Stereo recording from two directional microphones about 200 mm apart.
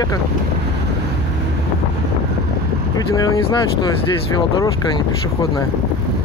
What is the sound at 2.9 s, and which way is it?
Speech, 15° left (ahead or behind).